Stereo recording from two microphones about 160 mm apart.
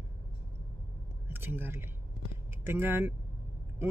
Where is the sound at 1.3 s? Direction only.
15° right (ahead or behind).